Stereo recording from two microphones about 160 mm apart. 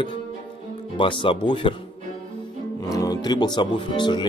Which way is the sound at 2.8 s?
20° left (ahead or behind).